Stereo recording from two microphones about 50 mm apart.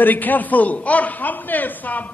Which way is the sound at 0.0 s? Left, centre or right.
Left.